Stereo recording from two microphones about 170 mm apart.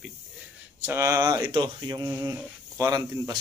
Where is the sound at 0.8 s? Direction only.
15° right (ahead or behind).